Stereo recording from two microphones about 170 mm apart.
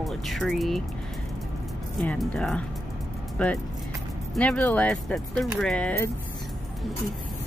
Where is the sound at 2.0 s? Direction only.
5° left (ahead or behind).